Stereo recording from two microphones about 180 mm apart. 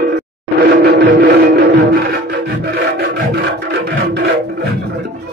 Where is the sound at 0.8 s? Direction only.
75° right (ahead or behind).